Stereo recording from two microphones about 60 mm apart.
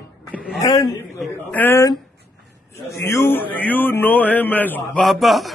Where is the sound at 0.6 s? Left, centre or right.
Left.